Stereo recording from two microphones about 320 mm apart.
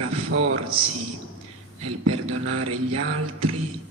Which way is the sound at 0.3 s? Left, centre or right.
Right.